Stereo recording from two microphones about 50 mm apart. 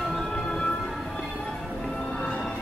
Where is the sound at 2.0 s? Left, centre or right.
Left.